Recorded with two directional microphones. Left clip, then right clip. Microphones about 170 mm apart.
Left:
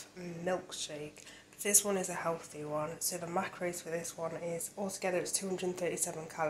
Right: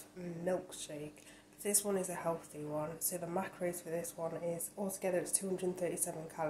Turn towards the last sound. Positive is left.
turn(degrees=-15)  # may be behind; listen again after turning